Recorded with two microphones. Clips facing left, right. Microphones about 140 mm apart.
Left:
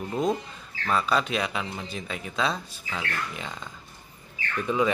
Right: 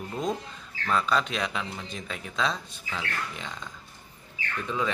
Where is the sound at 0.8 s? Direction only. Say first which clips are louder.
Left 1 dB; 5° left (ahead or behind).